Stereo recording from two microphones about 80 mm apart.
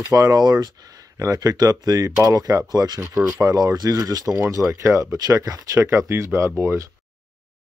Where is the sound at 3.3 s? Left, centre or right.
Right.